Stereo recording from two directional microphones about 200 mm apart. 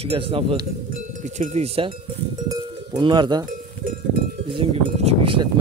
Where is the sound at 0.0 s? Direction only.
30° right (ahead or behind).